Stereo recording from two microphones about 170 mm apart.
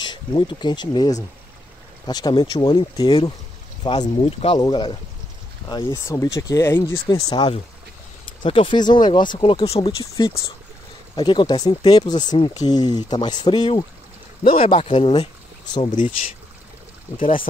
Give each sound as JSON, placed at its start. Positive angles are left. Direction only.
{"t": 0.0, "sound": "speech", "side_deg": 25}